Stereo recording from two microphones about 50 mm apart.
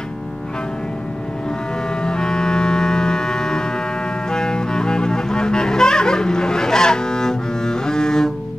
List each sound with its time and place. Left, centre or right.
2.0 s music: centre